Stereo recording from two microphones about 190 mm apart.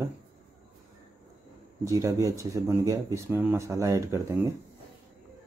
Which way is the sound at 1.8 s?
15° right (ahead or behind).